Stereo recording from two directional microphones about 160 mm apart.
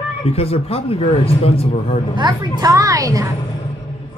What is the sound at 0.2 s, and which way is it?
Speech, 40° left (ahead or behind).